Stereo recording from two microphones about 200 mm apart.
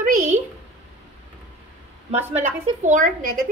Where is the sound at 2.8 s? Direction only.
40° right (ahead or behind).